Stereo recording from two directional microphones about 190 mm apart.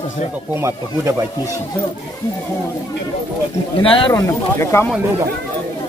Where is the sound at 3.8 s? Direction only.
30° left (ahead or behind).